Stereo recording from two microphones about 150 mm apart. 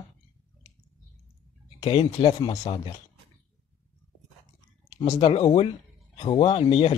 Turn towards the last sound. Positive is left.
turn(degrees=40)  # may be behind; listen again after turning